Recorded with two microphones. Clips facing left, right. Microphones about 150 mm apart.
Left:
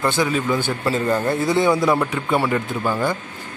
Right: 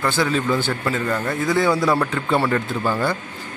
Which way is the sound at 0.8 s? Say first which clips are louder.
Left 3 dB; 30° left (ahead or behind).